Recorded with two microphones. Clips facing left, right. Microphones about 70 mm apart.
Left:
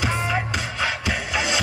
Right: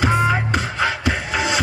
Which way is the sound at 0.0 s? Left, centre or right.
Right.